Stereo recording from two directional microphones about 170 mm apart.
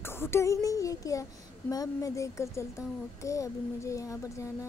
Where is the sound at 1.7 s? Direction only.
20° left (ahead or behind).